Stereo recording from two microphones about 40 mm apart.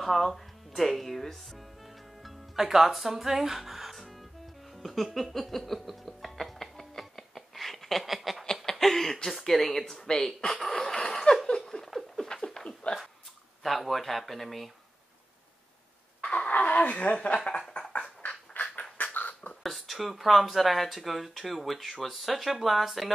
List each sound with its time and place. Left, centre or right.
0.0 s speech: centre
2.2 s music: centre
8.0 s snicker: centre
8.6 s a sound: centre
10.0 s speech: centre
11.1 s a sound: centre
12.9 s a sound: left
13.6 s speech: centre
16.2 s laughter: left
18.2 s a sound: left
19.1 s beatboxing: left
19.6 s speech: centre